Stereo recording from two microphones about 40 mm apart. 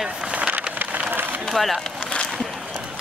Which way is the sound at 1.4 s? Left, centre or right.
Centre.